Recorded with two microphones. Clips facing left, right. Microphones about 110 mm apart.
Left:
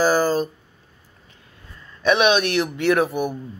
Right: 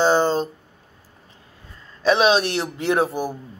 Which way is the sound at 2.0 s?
30° right (ahead or behind).